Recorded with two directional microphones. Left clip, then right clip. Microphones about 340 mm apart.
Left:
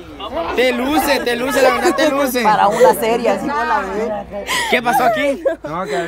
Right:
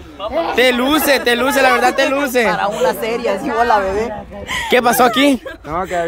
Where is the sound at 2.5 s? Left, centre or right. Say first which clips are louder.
Left 5 dB; left.